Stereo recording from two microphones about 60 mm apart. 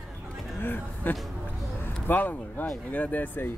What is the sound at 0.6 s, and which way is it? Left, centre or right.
Speech, left.